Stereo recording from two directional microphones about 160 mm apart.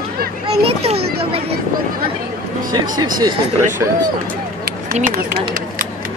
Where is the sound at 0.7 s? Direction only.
35° right (ahead or behind).